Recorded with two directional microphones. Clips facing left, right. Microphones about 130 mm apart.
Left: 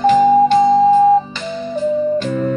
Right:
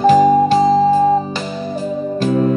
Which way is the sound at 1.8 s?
40° right (ahead or behind).